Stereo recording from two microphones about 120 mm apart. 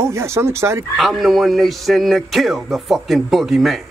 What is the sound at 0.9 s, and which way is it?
Speech, centre (ahead or behind).